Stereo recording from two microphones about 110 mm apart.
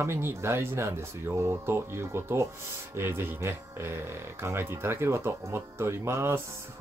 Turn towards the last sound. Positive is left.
turn(degrees=-20)  # may be behind; listen again after turning